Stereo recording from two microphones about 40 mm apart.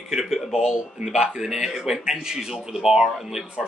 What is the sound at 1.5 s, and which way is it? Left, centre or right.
Speech, centre.